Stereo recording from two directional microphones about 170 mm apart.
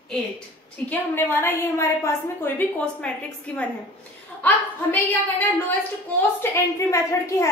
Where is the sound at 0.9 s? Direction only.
10° left (ahead or behind).